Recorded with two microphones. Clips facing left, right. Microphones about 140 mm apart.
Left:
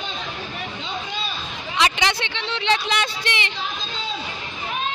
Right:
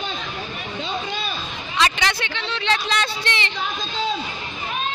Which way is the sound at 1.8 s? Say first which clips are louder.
Even; 15° left (ahead or behind).